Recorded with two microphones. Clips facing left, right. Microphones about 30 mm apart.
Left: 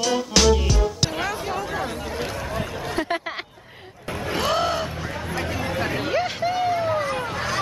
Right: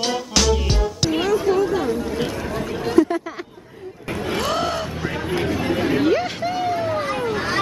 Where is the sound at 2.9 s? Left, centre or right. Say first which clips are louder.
Right 9 dB; left.